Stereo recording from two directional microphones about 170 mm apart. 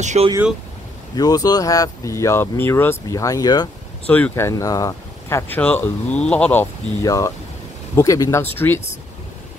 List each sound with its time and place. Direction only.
0.0 s speech: 45° right (ahead or behind)
1.1 s speech: 20° left (ahead or behind)
4.1 s speech: 10° left (ahead or behind)